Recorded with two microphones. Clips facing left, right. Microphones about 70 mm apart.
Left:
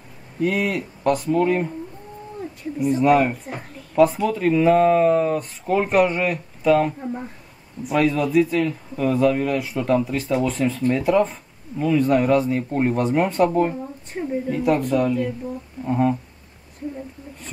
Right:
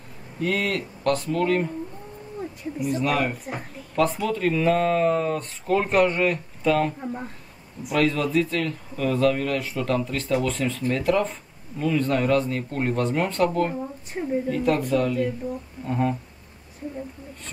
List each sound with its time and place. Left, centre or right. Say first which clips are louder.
0.4 s speech: left 3 dB; centre
3.0 s speech: left 9 dB; centre
14.2 s speech: left 1 dB; centre